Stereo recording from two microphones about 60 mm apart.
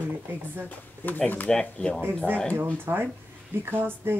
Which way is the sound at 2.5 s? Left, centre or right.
Right.